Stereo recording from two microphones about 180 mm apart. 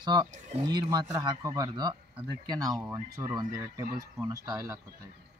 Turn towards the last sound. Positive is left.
turn(degrees=-15)  # may be behind; listen again after turning